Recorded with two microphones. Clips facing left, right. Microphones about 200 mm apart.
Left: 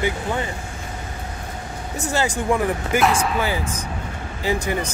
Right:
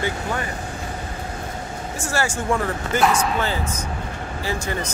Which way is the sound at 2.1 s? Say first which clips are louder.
Left 2 dB; 20° left (ahead or behind).